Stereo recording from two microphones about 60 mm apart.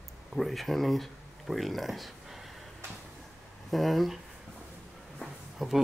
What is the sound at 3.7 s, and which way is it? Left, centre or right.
Speech, centre.